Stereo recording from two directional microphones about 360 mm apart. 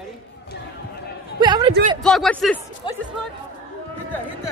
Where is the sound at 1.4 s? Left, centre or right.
Centre.